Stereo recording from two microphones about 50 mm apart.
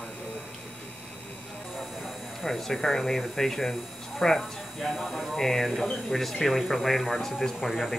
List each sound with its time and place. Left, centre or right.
2.4 s speech: centre